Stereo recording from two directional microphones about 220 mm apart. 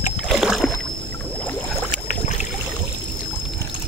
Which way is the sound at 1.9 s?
35° left (ahead or behind).